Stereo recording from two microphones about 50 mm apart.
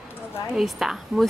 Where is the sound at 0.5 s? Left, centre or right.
Centre.